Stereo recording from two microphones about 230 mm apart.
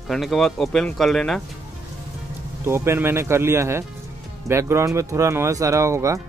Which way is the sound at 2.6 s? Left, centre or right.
Centre.